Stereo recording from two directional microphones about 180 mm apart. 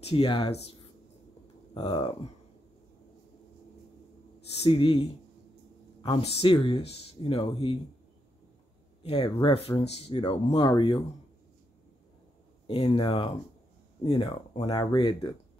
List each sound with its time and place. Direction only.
0.0 s speech: 30° left (ahead or behind)
4.6 s speech: 30° left (ahead or behind)
6.2 s speech: 30° left (ahead or behind)
9.1 s speech: 25° left (ahead or behind)
12.6 s speech: 30° left (ahead or behind)